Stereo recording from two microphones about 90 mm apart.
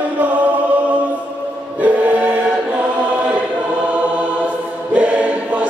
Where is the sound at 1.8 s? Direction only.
15° right (ahead or behind).